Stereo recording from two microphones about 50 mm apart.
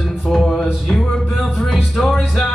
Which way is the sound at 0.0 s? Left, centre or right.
Centre.